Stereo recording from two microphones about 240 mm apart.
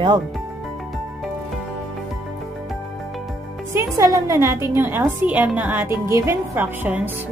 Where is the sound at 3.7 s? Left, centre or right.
Centre.